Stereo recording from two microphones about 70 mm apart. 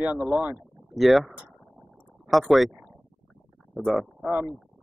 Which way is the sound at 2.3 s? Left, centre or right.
Centre.